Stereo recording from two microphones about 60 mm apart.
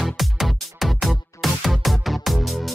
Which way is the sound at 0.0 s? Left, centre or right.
Centre.